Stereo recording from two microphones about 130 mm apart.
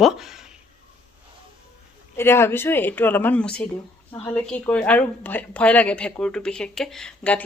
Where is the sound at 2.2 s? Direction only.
20° left (ahead or behind).